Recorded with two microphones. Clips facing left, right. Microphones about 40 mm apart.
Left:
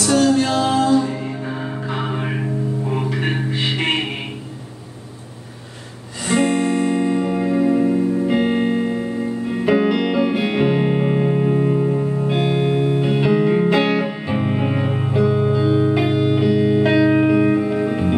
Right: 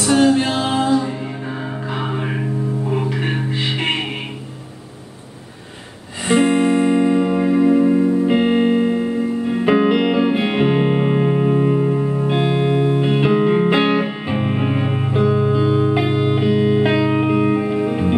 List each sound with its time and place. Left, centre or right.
0.0 s music: right
1.5 s music: centre
6.2 s music: right